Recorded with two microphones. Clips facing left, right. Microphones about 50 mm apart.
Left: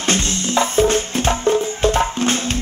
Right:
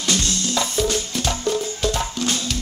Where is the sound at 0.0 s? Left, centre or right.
Left.